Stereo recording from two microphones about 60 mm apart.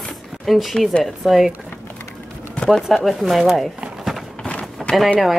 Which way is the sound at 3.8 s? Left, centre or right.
Centre.